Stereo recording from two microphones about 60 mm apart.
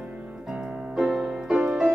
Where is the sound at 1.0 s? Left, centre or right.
Centre.